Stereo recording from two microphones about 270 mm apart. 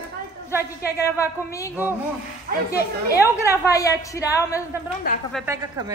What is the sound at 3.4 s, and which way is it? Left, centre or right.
A woman's voice, centre.